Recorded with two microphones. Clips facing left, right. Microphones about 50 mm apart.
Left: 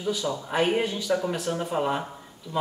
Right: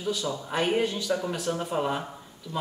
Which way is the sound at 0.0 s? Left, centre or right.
Centre.